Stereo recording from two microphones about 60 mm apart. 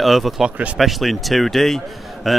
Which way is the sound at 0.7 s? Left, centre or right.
Centre.